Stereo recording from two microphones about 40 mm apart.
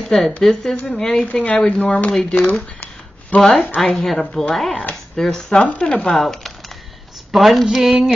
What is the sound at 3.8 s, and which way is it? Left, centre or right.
Speech, centre.